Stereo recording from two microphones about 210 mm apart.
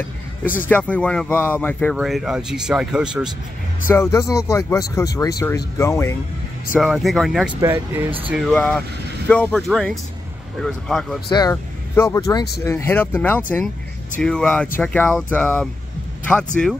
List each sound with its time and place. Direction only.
0.7 s speech: 5° left (ahead or behind)
3.9 s speech: 15° left (ahead or behind)
6.7 s speech: centre (ahead or behind)
7.6 s speech: 10° right (ahead or behind)
8.3 s speech: 5° left (ahead or behind)
11.2 s speech: 20° left (ahead or behind)